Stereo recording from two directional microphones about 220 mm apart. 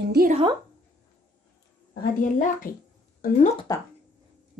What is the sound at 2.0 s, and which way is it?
A woman's voice, 40° left (ahead or behind).